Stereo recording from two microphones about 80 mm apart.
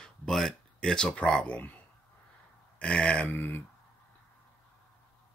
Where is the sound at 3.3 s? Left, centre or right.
Left.